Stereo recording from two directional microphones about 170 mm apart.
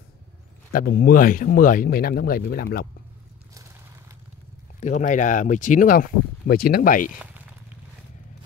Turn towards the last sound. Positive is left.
turn(degrees=55)  # may be behind; listen again after turning